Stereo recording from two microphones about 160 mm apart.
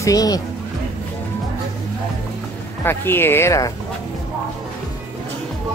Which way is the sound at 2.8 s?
15° left (ahead or behind).